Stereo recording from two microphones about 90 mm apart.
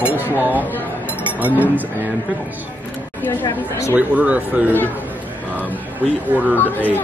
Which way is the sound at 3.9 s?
15° right (ahead or behind).